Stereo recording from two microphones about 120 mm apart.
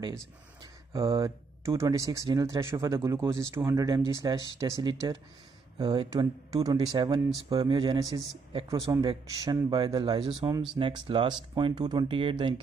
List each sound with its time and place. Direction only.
0.9 s speech: 30° right (ahead or behind); by 12.5 s 45° right (ahead or behind)